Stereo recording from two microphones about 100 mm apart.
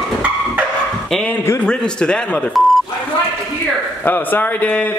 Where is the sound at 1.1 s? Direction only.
5° left (ahead or behind).